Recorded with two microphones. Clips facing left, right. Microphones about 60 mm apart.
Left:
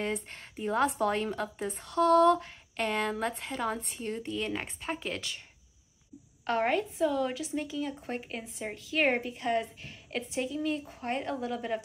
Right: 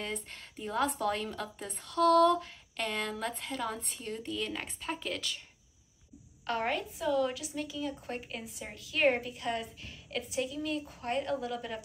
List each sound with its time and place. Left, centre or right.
0.1 s a woman's voice: centre
1.7 s a woman's voice: centre
6.4 s a woman's voice: centre